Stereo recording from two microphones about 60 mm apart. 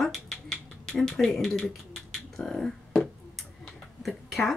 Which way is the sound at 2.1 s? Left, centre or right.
Centre.